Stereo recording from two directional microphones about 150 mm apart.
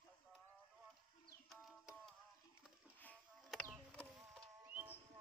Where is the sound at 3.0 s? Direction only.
10° left (ahead or behind).